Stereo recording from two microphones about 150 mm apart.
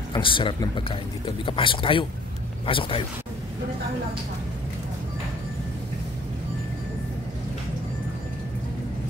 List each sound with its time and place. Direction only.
0.1 s speech: 35° left (ahead or behind)